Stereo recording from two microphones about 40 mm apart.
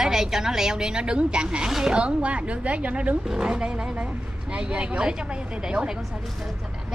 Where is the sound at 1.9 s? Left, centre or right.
Right.